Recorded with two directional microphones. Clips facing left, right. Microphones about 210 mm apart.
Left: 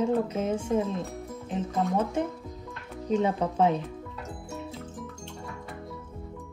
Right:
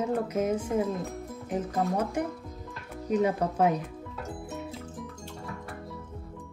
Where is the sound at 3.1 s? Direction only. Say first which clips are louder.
Even; 25° left (ahead or behind).